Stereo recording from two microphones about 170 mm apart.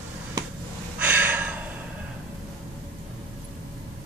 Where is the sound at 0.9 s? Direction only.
10° right (ahead or behind).